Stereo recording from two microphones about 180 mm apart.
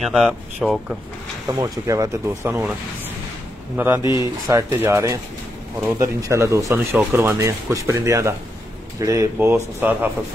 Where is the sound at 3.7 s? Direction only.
10° right (ahead or behind).